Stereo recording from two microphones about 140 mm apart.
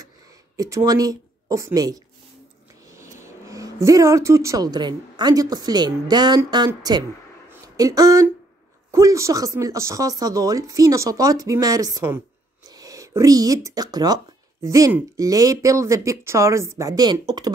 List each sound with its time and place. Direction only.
0.6 s speech: 25° right (ahead or behind)